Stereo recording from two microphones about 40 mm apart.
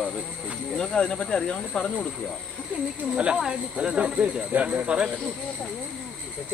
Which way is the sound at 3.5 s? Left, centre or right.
Right.